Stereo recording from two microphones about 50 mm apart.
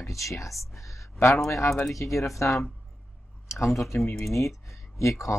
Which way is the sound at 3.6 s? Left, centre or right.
Left.